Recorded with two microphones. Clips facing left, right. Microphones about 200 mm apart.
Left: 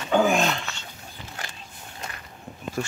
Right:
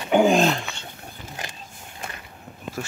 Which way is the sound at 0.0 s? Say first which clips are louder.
Right 3 dB; 15° right (ahead or behind).